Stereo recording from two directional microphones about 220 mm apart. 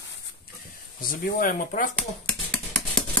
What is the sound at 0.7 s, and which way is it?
Speech, 40° left (ahead or behind).